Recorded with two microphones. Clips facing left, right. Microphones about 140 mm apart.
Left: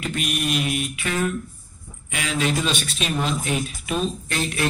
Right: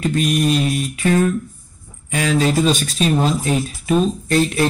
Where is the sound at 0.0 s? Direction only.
40° right (ahead or behind).